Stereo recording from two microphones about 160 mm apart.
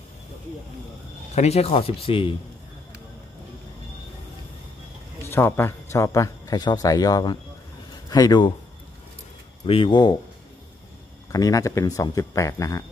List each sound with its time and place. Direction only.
1.3 s a man's voice: 40° left (ahead or behind)
5.3 s a man's voice: 15° left (ahead or behind)
9.7 s a man's voice: 30° left (ahead or behind)
11.3 s a man's voice: 20° left (ahead or behind)